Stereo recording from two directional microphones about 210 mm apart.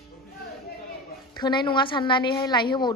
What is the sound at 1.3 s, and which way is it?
A woman's voice, 20° left (ahead or behind).